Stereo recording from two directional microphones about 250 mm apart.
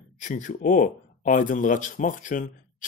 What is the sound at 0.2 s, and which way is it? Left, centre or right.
Speech, left.